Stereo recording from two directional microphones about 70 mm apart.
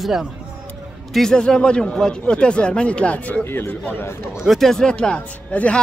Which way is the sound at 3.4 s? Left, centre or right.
Left.